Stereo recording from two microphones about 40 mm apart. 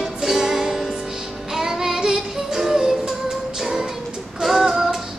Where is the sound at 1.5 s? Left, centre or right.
Centre.